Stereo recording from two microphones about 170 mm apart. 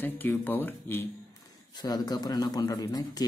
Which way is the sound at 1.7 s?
25° left (ahead or behind).